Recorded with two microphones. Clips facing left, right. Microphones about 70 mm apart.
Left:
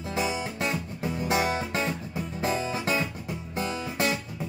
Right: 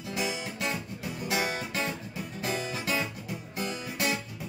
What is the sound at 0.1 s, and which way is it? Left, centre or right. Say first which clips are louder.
Music: left 4 dB; left.